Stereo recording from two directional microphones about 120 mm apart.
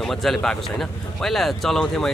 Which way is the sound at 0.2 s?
5° left (ahead or behind).